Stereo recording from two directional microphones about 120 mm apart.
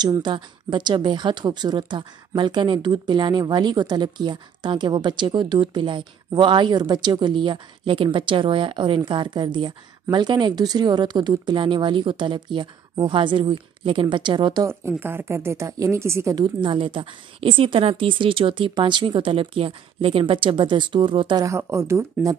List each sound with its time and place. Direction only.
0.0 s speech: 35° right (ahead or behind)
14.7 s speech: 20° right (ahead or behind)
16.3 s a woman's voice: 40° right (ahead or behind)
21.5 s speech: 20° right (ahead or behind)